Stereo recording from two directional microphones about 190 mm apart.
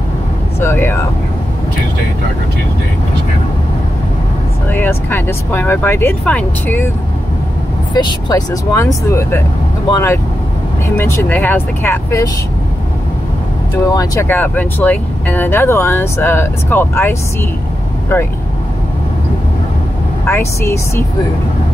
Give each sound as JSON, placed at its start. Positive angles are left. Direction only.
{"t": 0.6, "sound": "speech", "side_deg": 15}
{"t": 4.6, "sound": "speech", "side_deg": 10}
{"t": 7.9, "sound": "speech", "side_deg": 20}
{"t": 13.8, "sound": "speech", "side_deg": 15}
{"t": 20.2, "sound": "speech", "side_deg": 15}